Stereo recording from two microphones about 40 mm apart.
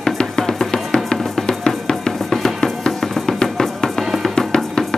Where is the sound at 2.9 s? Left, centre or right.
Centre.